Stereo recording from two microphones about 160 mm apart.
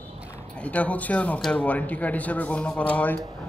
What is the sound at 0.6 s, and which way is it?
Speech, 10° left (ahead or behind).